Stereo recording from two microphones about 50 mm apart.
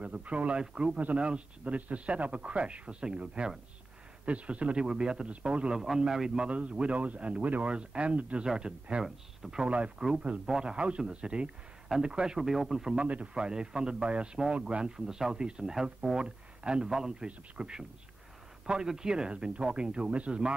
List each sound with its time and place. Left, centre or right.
0.0 s a man's voice: right
5.9 s a man's voice: centre
12.4 s a man's voice: centre
12.9 s a man's voice: right